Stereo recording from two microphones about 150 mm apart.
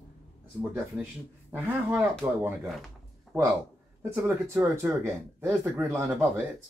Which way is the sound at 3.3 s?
Centre (ahead or behind).